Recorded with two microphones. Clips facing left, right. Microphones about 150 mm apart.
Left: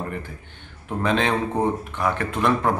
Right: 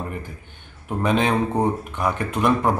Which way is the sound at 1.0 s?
15° right (ahead or behind).